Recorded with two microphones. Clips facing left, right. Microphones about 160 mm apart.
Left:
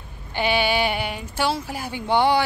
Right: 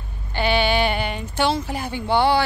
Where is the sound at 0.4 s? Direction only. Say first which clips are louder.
Right 2 dB; 10° left (ahead or behind).